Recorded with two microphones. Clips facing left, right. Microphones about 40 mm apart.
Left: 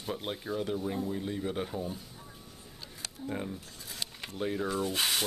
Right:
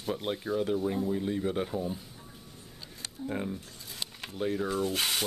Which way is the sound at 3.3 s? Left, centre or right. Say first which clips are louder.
Right 2 dB; centre.